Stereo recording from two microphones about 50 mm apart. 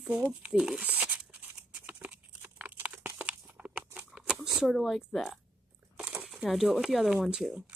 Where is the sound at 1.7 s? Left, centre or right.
Right.